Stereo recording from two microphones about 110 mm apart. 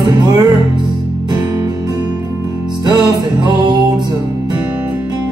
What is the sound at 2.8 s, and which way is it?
Music, 40° right (ahead or behind).